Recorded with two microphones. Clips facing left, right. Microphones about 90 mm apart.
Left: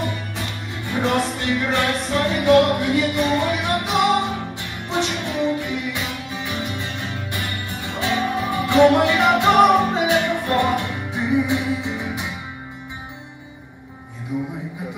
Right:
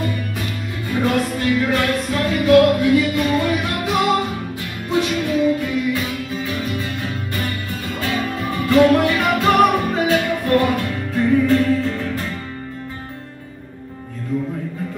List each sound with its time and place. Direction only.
0.0 s music: 25° left (ahead or behind)